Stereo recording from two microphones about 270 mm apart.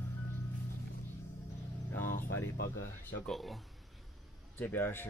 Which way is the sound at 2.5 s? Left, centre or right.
Left.